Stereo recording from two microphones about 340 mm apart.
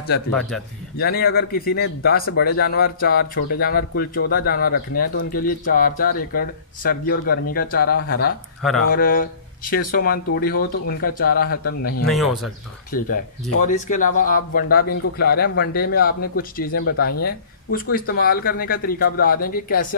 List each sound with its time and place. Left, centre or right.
0.9 s speech: left
12.1 s speech: centre
12.9 s speech: left